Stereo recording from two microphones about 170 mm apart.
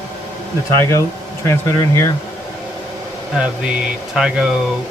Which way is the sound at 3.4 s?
5° right (ahead or behind).